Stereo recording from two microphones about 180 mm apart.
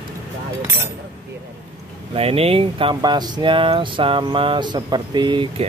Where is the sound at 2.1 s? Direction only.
35° right (ahead or behind).